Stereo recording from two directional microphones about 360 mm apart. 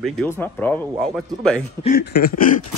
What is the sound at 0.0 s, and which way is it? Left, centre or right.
Speech, centre.